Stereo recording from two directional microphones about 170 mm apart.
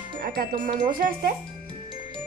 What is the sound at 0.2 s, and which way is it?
Speech, 60° right (ahead or behind).